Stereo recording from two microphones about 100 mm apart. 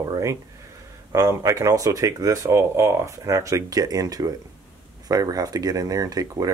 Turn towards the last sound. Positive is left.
turn(degrees=-35)  # may be behind; listen again after turning